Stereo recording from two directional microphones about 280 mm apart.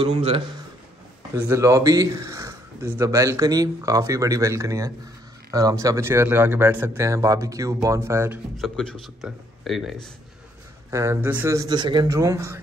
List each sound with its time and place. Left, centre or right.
0.0 s a man's voice: right
1.3 s a man's voice: centre